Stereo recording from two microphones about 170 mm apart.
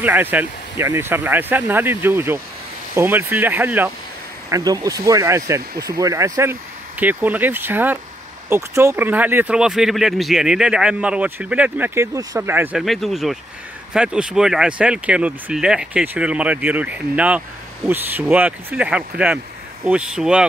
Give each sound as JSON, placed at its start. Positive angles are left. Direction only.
{"t": 0.0, "sound": "speech", "side_deg": -10}
{"t": 4.5, "sound": "speech", "side_deg": -20}
{"t": 12.8, "sound": "speech", "side_deg": 0}